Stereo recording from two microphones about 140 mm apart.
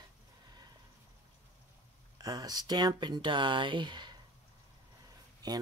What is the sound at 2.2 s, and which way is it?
Speech, 25° right (ahead or behind).